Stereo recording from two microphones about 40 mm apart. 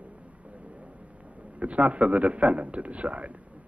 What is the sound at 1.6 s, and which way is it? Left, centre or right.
A man's voice, right.